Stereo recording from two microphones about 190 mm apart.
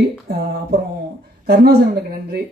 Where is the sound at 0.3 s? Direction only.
60° right (ahead or behind).